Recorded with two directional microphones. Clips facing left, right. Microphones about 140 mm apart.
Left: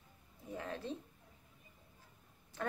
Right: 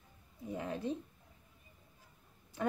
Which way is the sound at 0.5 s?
15° right (ahead or behind).